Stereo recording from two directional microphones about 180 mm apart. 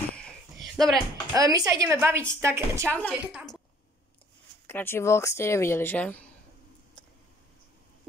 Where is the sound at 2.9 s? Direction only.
10° left (ahead or behind).